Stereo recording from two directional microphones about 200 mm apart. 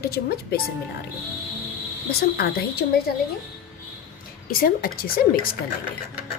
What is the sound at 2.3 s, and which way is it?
Speech, 50° left (ahead or behind).